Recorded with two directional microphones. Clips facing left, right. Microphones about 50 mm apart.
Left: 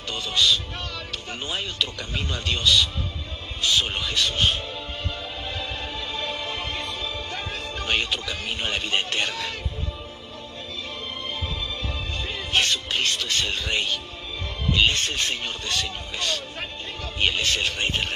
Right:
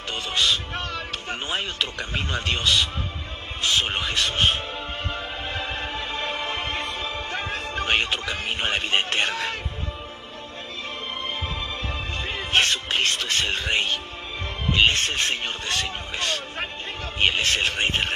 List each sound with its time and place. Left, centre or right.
0.1 s speech: right
5.5 s music: right
12.3 s speech: right